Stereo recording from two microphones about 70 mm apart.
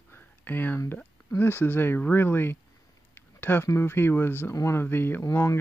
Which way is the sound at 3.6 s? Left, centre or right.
Left.